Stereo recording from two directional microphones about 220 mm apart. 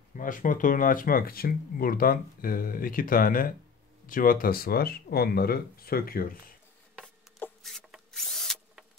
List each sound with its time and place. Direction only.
0.1 s speech: 35° left (ahead or behind)
7.0 s tools: 5° left (ahead or behind)